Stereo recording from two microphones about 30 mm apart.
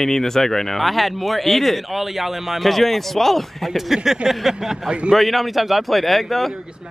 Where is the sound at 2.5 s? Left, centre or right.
Centre.